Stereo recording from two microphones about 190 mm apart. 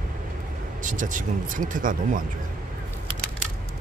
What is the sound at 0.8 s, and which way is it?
Speech, 45° right (ahead or behind).